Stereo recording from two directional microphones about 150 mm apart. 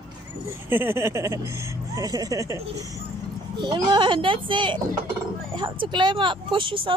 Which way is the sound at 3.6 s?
30° right (ahead or behind).